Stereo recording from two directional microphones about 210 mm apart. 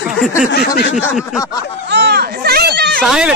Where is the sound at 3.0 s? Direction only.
Centre (ahead or behind).